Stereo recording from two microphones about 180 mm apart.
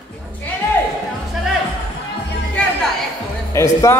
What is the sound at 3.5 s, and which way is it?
Speech, 15° left (ahead or behind).